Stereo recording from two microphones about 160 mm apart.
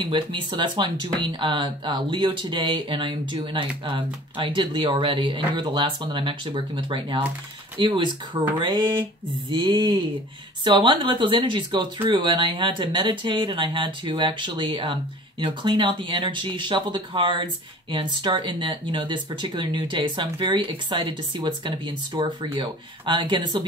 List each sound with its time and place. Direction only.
0.0 s speech: 30° right (ahead or behind)